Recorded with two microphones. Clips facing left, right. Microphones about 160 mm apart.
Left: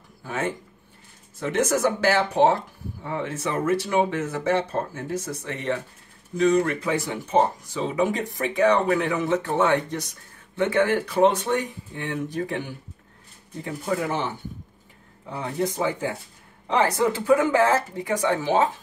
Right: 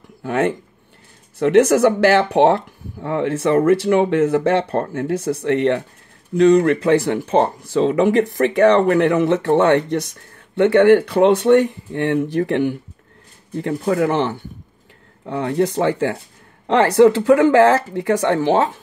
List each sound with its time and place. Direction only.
0.2 s speech: 60° right (ahead or behind)